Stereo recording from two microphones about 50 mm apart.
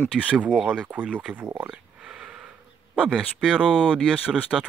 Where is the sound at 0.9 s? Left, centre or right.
Right.